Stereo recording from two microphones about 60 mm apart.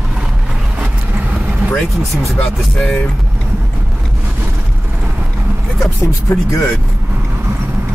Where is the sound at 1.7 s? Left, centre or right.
Centre.